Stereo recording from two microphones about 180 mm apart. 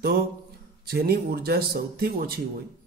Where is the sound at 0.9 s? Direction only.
60° right (ahead or behind).